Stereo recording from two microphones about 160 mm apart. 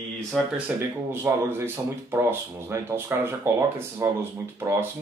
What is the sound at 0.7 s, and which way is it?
Speech, 10° right (ahead or behind).